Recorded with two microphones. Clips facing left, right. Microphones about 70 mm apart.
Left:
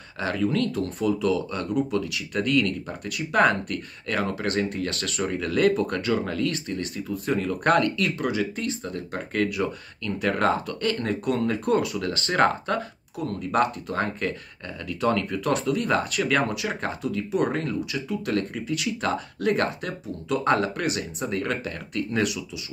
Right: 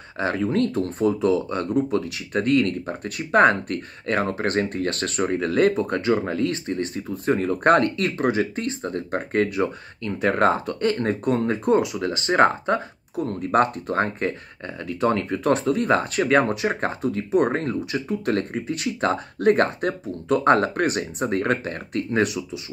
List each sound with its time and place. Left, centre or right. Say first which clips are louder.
0.2 s speech: right 3 dB; right